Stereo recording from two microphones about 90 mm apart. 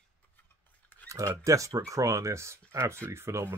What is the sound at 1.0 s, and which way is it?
Speech, 35° right (ahead or behind).